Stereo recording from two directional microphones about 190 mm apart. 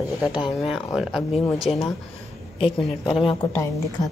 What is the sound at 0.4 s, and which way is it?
Speech, centre (ahead or behind).